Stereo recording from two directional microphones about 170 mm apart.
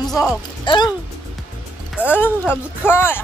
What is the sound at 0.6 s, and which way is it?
Speech, 25° left (ahead or behind).